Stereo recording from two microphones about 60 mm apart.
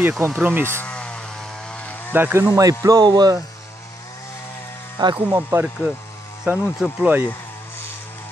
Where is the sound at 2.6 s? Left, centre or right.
Right.